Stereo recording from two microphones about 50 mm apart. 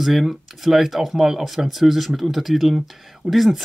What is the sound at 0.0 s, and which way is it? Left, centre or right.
Speech, centre.